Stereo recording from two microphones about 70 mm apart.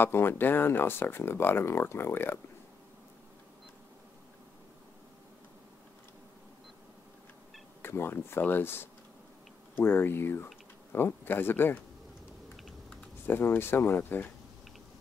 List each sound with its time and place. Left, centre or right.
0.0 s speech: left
7.8 s speech: left
13.3 s speech: left